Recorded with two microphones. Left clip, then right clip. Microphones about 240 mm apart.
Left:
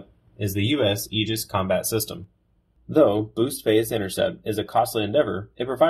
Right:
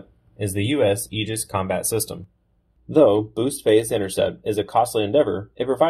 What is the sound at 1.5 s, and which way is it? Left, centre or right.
Speech, right.